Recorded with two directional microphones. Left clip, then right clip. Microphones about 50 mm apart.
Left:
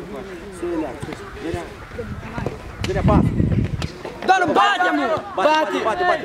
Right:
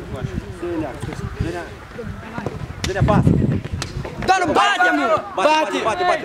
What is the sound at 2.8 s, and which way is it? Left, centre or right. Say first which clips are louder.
A man's voice: right 1 dB; right.